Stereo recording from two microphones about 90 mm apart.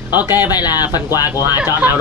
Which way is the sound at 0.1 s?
20° right (ahead or behind).